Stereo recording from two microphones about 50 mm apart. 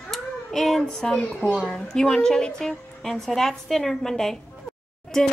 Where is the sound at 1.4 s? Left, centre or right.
Left.